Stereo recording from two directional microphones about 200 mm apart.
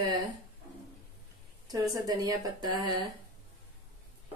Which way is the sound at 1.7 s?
20° right (ahead or behind).